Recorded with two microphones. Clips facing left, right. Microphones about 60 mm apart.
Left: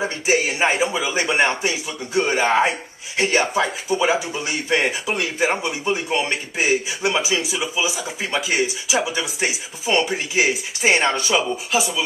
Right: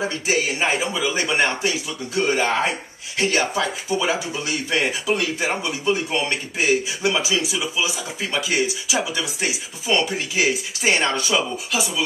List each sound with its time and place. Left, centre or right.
0.0 s speech: centre; by 3.4 s left
3.5 s speech: centre